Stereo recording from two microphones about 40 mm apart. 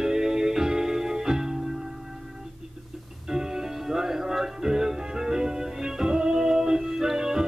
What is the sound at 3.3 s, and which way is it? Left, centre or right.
Music, centre.